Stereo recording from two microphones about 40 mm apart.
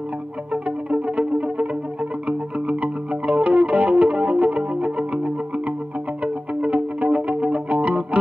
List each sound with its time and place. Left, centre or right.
0.5 s music: right